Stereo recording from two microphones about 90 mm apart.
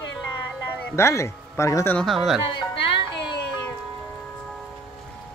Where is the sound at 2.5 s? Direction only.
70° left (ahead or behind).